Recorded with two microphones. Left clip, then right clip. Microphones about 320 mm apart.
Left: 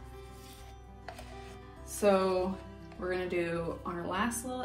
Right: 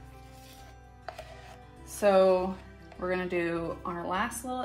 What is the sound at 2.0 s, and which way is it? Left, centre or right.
Speech, right.